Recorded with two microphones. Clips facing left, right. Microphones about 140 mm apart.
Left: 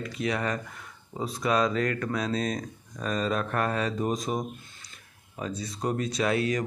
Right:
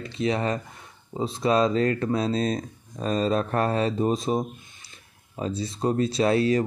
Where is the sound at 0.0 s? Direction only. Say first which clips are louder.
Right 4 dB; 25° right (ahead or behind).